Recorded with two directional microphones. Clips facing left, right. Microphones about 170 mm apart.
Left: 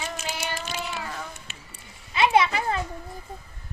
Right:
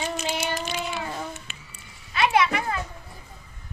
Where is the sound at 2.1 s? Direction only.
25° left (ahead or behind).